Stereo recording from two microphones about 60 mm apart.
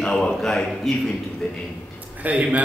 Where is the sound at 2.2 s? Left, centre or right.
Right.